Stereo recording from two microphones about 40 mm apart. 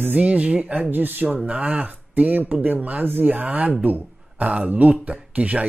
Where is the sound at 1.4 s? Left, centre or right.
Right.